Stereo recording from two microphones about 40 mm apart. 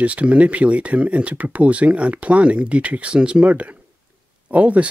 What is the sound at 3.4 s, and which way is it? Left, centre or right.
Speech, right.